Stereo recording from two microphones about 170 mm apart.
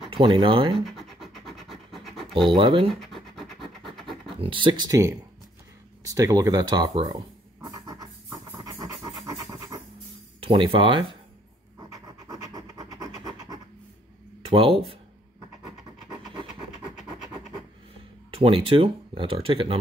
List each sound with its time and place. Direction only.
0.1 s speech: 30° right (ahead or behind)
0.7 s scratch: centre (ahead or behind)
2.5 s speech: 30° right (ahead or behind)
2.9 s scratch: centre (ahead or behind)
4.4 s speech: 30° right (ahead or behind)
7.6 s scratch: 20° right (ahead or behind)
10.4 s speech: 30° right (ahead or behind)
11.9 s a sound: 20° right (ahead or behind)
14.4 s speech: 35° right (ahead or behind)
18.3 s speech: 30° right (ahead or behind)